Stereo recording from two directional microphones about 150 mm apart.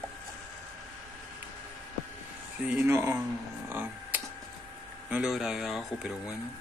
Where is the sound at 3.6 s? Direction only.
10° right (ahead or behind).